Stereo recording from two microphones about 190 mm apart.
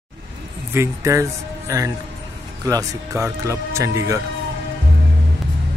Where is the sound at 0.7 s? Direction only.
15° right (ahead or behind).